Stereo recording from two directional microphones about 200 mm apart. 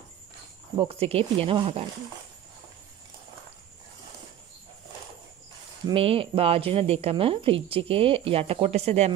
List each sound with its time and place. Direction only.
0.7 s speech: 30° right (ahead or behind)
5.9 s speech: 30° right (ahead or behind)